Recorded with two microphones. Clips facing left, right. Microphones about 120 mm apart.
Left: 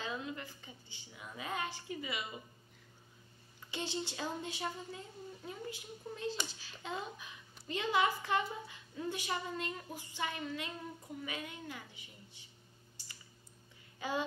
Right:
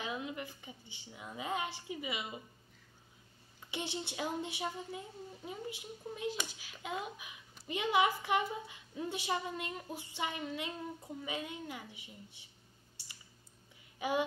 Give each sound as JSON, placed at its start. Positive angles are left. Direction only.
{"t": 0.0, "sound": "a woman's voice", "side_deg": -15}
{"t": 3.7, "sound": "a woman's voice", "side_deg": -20}
{"t": 13.9, "sound": "speech", "side_deg": -15}